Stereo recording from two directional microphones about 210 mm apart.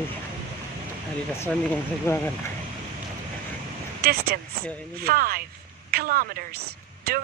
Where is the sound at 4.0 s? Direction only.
50° right (ahead or behind).